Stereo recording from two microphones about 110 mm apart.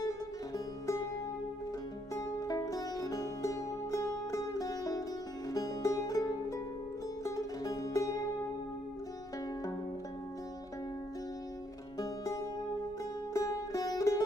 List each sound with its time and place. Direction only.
2.1 s music: 35° left (ahead or behind)
7.2 s music: 35° left (ahead or behind)
13.3 s music: 30° left (ahead or behind)